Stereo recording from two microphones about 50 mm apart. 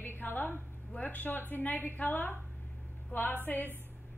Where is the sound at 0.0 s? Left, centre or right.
Left.